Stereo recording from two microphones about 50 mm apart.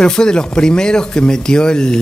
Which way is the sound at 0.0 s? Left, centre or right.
Centre.